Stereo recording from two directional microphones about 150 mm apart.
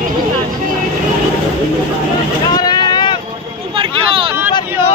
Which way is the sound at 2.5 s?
30° left (ahead or behind).